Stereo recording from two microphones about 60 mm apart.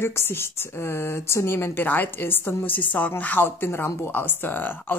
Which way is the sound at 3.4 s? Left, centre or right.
Left.